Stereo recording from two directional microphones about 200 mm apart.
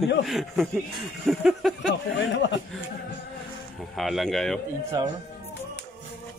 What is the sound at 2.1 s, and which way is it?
Speech, 65° left (ahead or behind).